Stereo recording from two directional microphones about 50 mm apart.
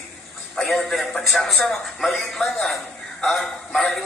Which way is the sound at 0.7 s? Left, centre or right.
Centre.